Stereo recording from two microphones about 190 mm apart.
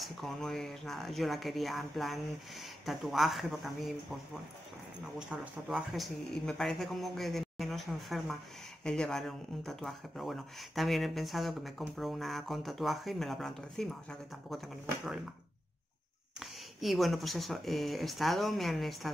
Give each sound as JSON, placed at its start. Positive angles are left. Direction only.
{"t": 0.0, "sound": "speech", "side_deg": 0}
{"t": 5.3, "sound": "speech", "side_deg": -5}
{"t": 16.3, "sound": "speech", "side_deg": 0}